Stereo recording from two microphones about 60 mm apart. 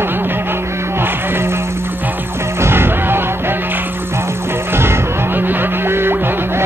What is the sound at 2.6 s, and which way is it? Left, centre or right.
Music, right.